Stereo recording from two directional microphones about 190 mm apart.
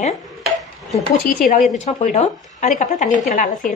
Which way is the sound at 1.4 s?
40° left (ahead or behind).